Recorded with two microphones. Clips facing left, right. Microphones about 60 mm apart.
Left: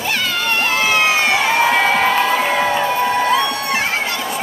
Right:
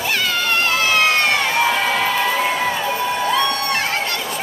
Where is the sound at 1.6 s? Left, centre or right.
Left.